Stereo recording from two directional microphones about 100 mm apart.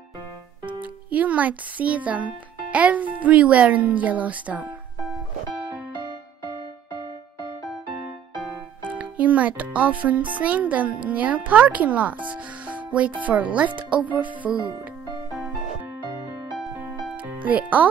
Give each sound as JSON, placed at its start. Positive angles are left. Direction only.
{"t": 0.7, "sound": "speech", "side_deg": -15}
{"t": 8.9, "sound": "music", "side_deg": -15}
{"t": 9.8, "sound": "speech", "side_deg": -15}
{"t": 17.4, "sound": "a child's voice", "side_deg": -15}